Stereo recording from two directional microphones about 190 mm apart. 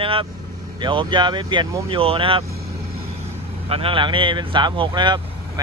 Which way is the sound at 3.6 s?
30° right (ahead or behind).